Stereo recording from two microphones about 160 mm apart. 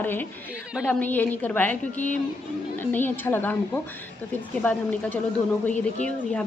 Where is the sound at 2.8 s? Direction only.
10° left (ahead or behind).